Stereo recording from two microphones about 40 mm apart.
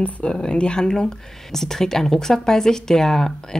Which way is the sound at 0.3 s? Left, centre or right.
Left.